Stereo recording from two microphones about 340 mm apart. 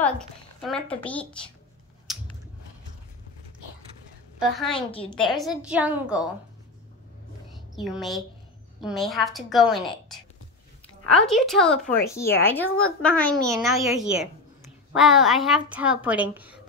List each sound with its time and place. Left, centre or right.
0.6 s a woman's voice: centre
2.1 s a sound: centre
4.4 s a woman's voice: centre
4.7 s a woman's voice: centre
5.1 s a woman's voice: centre
7.5 s a woman's voice: centre